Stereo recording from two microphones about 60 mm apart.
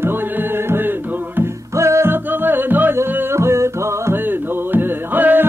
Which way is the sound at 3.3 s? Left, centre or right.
Right.